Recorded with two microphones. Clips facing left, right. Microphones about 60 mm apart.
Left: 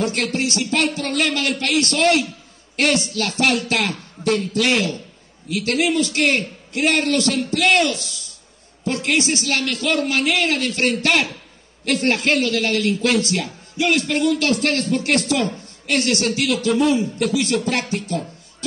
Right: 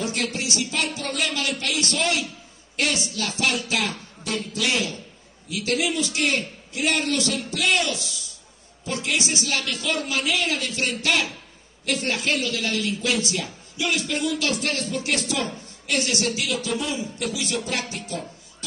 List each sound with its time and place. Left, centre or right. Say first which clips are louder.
0.0 s speech: left 6 dB; left